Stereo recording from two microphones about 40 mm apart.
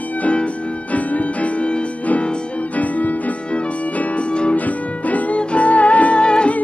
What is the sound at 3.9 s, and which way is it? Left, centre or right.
Music, left.